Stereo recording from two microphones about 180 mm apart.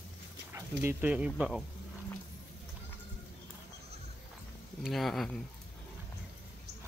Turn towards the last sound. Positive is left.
turn(degrees=0)  # may be behind; listen again after turning